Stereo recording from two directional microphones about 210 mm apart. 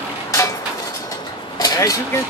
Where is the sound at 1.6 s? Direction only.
15° left (ahead or behind).